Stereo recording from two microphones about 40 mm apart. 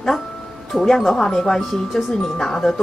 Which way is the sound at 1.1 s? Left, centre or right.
Centre.